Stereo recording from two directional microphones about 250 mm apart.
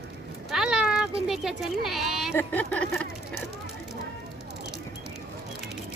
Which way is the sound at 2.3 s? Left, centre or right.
Centre.